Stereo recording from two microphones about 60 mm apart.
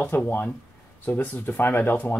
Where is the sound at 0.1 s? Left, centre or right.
Left.